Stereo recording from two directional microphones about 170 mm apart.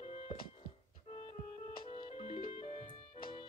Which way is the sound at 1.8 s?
30° left (ahead or behind).